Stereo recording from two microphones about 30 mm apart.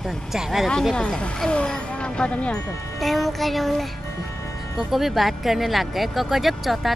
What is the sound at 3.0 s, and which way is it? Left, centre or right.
Speech, centre.